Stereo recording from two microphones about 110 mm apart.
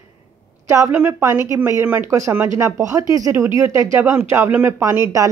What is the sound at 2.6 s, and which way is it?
Speech, 30° right (ahead or behind).